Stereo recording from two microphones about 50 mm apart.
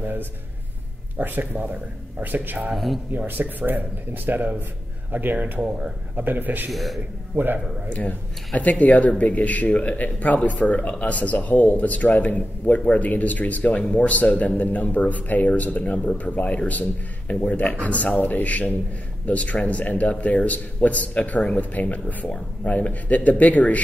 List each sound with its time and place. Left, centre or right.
0.0 s a sound: right
1.2 s speech: right
2.7 s speech: centre
3.1 s speech: right
6.7 s speech: centre
7.3 s speech: right
7.9 s a man's voice: left